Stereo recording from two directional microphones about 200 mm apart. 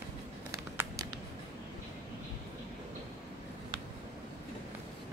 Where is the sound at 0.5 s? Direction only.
15° right (ahead or behind).